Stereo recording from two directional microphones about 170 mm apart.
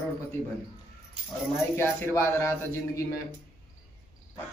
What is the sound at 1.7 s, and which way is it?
A man's voice, 15° left (ahead or behind).